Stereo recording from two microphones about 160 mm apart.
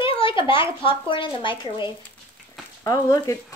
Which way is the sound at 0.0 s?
30° left (ahead or behind).